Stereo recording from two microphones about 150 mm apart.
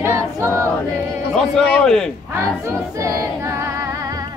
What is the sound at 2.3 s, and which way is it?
Music, 20° right (ahead or behind).